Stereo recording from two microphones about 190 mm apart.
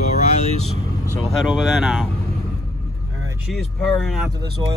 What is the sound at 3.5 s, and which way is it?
Speech, centre (ahead or behind).